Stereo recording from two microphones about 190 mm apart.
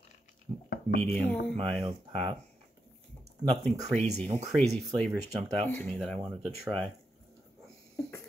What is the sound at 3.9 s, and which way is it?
Speech, 35° right (ahead or behind).